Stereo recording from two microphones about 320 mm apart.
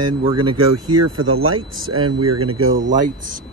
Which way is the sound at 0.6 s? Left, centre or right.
Right.